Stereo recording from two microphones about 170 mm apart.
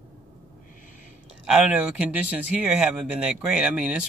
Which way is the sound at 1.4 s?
5° right (ahead or behind).